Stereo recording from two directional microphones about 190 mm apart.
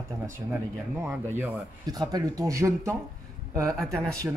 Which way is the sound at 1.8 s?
20° right (ahead or behind).